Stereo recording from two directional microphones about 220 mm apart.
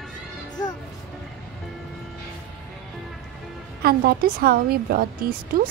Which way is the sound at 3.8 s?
45° right (ahead or behind).